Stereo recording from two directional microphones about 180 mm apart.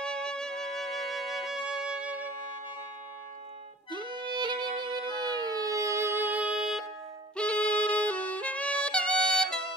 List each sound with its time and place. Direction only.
0.0 s music: 5° left (ahead or behind)
3.9 s music: 25° right (ahead or behind); by 6.9 s 5° right (ahead or behind)
7.3 s saxophone: 5° left (ahead or behind)